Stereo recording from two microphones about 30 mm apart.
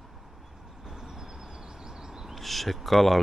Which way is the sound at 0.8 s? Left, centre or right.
Centre.